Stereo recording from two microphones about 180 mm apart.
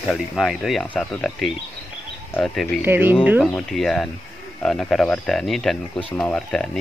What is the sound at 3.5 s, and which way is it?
Speech, centre (ahead or behind).